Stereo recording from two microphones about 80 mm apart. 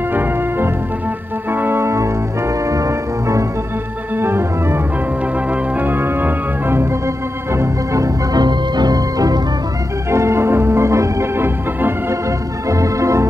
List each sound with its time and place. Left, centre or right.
0.1 s organ: right
1.5 s music: right
4.2 s music: right
5.5 s organ: right
8.3 s organ: right
10.1 s organ: right
12.6 s organ: right